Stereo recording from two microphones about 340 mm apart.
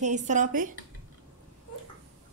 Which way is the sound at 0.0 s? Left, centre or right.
Right.